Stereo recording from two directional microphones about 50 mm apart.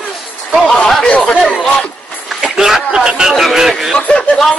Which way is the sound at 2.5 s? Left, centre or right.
Centre.